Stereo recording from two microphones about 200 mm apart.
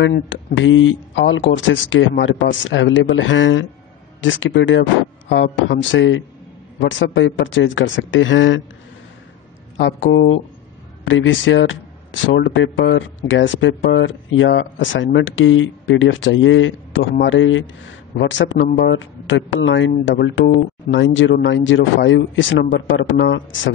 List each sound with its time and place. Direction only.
0.0 s speech: 60° left (ahead or behind)
9.8 s speech: 65° left (ahead or behind)